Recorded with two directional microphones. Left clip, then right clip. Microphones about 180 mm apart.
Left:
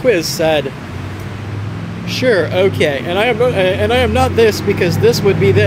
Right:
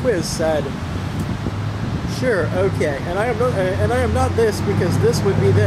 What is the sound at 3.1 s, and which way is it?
Speech, 25° left (ahead or behind).